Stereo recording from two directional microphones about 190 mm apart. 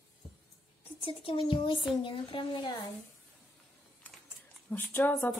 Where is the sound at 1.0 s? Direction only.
30° left (ahead or behind).